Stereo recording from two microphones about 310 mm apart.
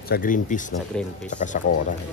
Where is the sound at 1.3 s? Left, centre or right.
Left.